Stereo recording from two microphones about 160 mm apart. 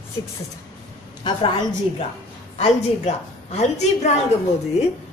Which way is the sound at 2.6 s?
45° left (ahead or behind).